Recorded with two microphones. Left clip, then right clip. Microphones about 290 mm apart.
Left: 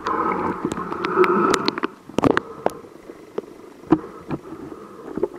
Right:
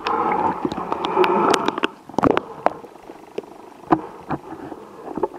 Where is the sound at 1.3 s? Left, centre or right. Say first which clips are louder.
Right 1 dB; centre.